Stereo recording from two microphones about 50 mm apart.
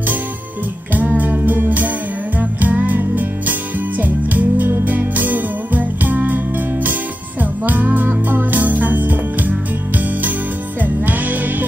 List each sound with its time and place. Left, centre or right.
0.9 s music: right